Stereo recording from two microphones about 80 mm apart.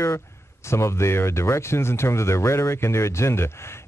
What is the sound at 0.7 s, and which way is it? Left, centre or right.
Speech, left.